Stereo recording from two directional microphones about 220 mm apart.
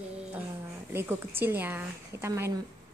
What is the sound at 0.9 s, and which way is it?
A woman's voice, 10° right (ahead or behind).